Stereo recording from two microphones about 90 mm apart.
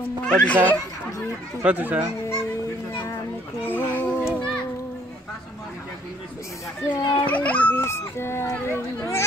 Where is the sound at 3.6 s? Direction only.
25° left (ahead or behind).